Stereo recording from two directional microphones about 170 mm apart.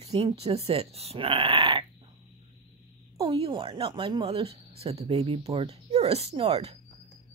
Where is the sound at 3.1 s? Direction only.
30° right (ahead or behind).